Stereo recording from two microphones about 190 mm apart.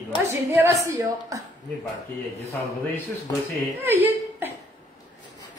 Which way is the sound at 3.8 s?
10° right (ahead or behind).